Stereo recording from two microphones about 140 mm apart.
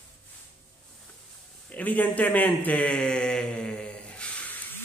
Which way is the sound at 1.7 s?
10° left (ahead or behind).